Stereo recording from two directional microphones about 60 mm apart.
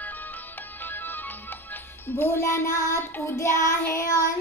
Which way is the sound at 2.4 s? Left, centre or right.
Left.